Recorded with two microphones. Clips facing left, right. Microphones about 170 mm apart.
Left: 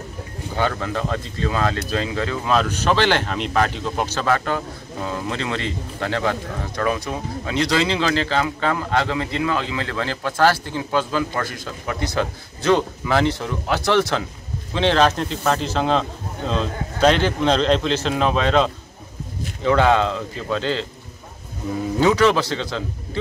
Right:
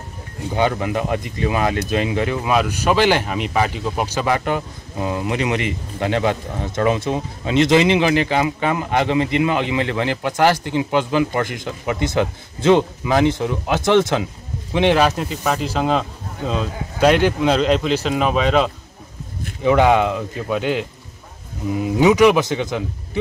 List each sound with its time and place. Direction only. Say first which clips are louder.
0.6 s speech: right 3 dB; 15° right (ahead or behind)